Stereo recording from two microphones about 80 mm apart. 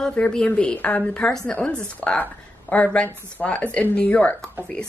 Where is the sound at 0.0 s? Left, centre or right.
Centre.